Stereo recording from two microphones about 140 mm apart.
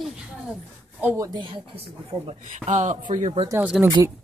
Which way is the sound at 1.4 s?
40° right (ahead or behind).